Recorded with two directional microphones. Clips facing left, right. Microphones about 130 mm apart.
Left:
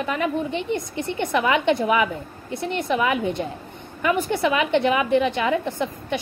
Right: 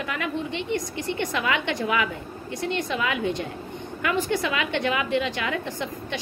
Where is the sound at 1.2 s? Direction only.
20° left (ahead or behind).